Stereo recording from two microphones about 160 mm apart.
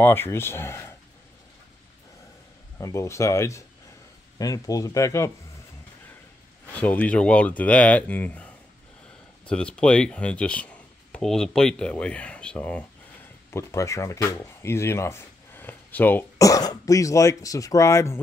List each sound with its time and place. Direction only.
0.0 s speech: 15° left (ahead or behind)
2.8 s speech: 20° left (ahead or behind)
6.7 s speech: 10° left (ahead or behind)
9.5 s speech: 5° left (ahead or behind)